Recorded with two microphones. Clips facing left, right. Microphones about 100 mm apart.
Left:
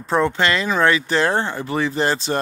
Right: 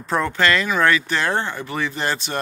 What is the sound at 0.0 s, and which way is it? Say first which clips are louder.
Speech: left 2 dB; 25° left (ahead or behind).